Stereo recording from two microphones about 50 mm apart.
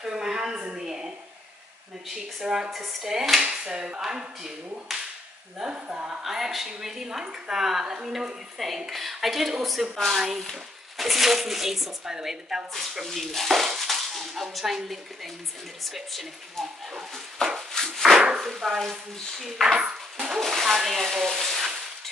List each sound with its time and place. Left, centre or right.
0.0 s dishes: centre
0.8 s a sound: centre
2.4 s dishes: centre
5.6 s dishes: centre
6.2 s dishes: centre
8.5 s speech: centre
17.6 s a sound: centre
18.4 s speech: centre
19.7 s ping: centre
20.3 s speech: centre